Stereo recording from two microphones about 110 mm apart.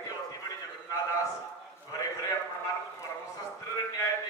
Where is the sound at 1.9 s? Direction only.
35° left (ahead or behind).